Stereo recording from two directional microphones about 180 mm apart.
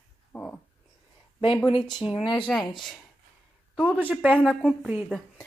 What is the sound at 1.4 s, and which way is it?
Speech, 30° left (ahead or behind).